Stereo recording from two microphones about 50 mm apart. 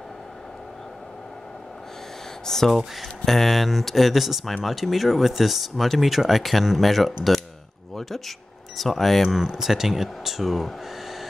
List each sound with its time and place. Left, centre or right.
2.4 s speech: centre
7.9 s a sound: centre
8.7 s speech: centre
9.4 s speech: centre